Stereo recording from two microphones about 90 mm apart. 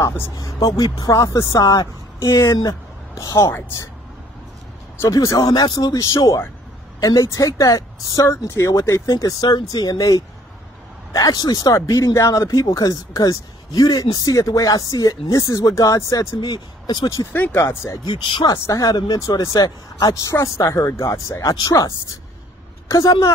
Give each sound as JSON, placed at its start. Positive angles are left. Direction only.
{"t": 0.4, "sound": "speech", "side_deg": 40}
{"t": 5.1, "sound": "speech", "side_deg": 40}
{"t": 16.3, "sound": "speech", "side_deg": 55}
{"t": 17.3, "sound": "speech", "side_deg": 15}
{"t": 17.6, "sound": "speech", "side_deg": 30}
{"t": 18.0, "sound": "speech", "side_deg": 60}
{"t": 18.7, "sound": "a woman's voice", "side_deg": 45}